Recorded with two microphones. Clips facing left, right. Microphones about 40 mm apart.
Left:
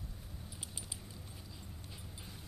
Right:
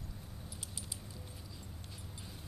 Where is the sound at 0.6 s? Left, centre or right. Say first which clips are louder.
Even; centre.